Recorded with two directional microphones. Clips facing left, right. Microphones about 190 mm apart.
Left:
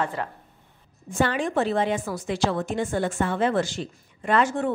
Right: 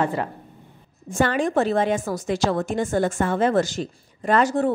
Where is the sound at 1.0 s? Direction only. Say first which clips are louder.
Right 3 dB; 45° right (ahead or behind).